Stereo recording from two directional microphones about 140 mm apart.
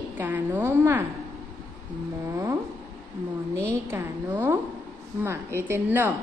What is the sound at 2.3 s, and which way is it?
Speech, 20° right (ahead or behind).